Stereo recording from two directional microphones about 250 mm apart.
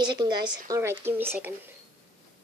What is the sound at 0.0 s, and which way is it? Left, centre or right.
A child's voice, centre.